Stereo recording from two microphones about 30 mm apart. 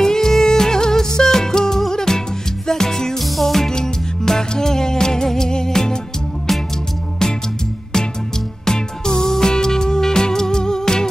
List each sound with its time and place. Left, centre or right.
0.0 s music: centre
3.2 s music: centre
8.6 s music: left